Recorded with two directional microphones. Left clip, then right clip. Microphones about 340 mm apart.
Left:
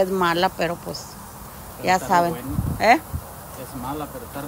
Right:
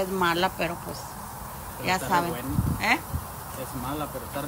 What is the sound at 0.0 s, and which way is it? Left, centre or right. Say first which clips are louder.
Speech: left 5 dB; centre.